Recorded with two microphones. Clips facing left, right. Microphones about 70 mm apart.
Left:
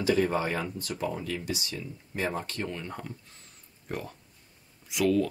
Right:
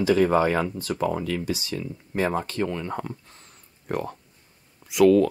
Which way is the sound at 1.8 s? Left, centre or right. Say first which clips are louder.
Right 7 dB; right.